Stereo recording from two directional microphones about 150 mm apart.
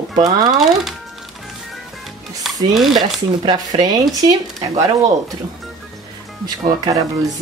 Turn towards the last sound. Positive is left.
turn(degrees=-25)  # may be behind; listen again after turning